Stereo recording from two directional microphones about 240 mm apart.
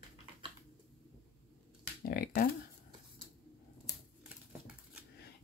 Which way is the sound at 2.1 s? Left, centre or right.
Left.